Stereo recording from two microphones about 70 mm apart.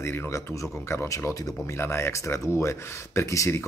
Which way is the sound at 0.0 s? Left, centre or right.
Left.